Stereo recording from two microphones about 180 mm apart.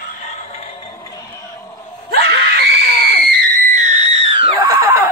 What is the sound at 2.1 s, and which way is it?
Screaming, 65° right (ahead or behind).